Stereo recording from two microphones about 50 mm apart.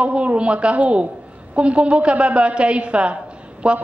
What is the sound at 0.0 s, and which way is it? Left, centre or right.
A woman's voice, right.